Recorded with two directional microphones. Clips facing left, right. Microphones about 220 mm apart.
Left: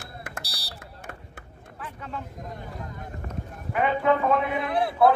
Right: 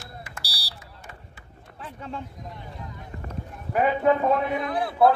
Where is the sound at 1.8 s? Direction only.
30° right (ahead or behind).